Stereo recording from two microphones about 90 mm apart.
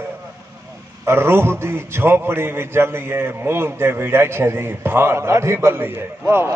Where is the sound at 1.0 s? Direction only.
25° right (ahead or behind).